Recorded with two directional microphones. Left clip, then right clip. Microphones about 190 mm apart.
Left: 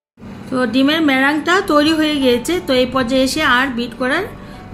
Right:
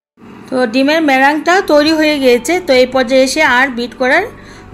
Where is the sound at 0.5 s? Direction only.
20° right (ahead or behind).